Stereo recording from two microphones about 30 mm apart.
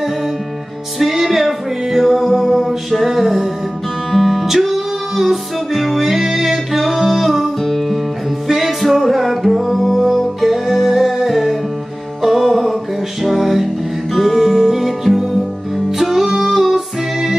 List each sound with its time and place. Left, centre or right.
0.9 s music: centre
4.5 s music: centre
7.6 s music: centre
8.5 s music: centre